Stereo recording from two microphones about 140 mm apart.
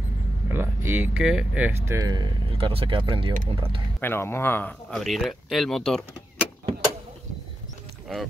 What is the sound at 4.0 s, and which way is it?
Speech, 15° left (ahead or behind).